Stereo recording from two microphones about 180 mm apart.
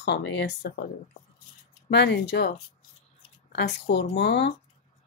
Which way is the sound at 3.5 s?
70° left (ahead or behind).